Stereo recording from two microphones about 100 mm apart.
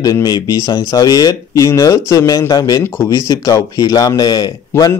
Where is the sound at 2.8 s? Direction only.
25° left (ahead or behind).